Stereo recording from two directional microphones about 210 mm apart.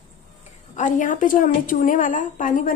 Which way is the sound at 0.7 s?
40° left (ahead or behind).